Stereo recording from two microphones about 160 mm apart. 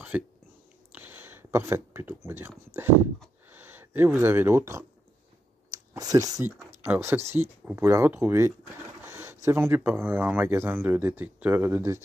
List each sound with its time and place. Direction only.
0.1 s speech: 10° right (ahead or behind)
0.9 s a sound: 10° right (ahead or behind)
3.4 s speech: 10° right (ahead or behind)